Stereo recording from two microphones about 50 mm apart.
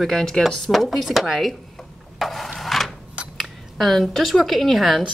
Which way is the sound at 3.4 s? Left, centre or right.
Centre.